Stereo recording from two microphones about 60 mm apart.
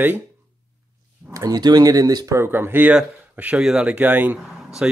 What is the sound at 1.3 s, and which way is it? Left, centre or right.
Speech, right.